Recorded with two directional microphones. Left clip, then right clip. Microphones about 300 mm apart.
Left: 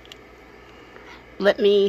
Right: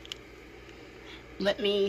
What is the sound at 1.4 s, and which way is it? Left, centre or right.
Speech, centre.